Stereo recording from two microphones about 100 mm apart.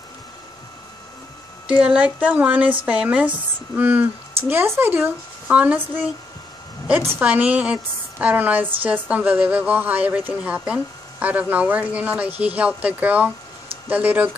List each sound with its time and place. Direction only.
1.7 s a woman's voice: 10° right (ahead or behind)
6.9 s a woman's voice: 15° right (ahead or behind)